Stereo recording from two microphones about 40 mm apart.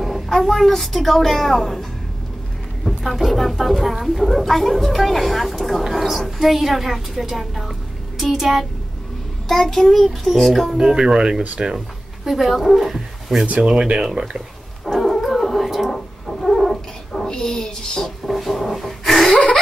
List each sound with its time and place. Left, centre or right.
0.3 s a woman's voice: centre
9.5 s a woman's voice: centre
10.8 s speech: centre
12.3 s a woman's voice: centre
13.6 s speech: right
14.9 s dog: centre
15.9 s a sound: centre
19.3 s a sound: left